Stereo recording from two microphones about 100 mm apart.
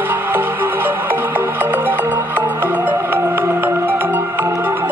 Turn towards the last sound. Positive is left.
turn(degrees=-25)  # may be behind; listen again after turning